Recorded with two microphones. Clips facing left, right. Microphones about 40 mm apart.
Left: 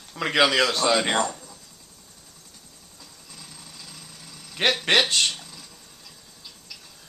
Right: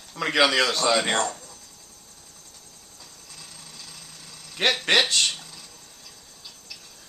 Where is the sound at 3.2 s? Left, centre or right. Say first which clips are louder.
Left 1 dB; centre.